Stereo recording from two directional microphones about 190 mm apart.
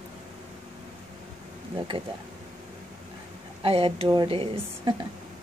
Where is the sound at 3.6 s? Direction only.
30° right (ahead or behind).